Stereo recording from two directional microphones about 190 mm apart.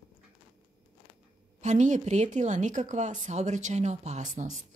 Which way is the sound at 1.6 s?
40° right (ahead or behind).